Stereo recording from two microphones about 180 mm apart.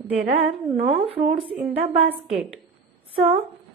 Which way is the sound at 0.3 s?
35° right (ahead or behind).